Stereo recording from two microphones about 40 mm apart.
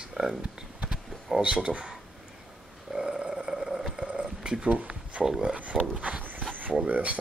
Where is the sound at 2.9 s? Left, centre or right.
Centre.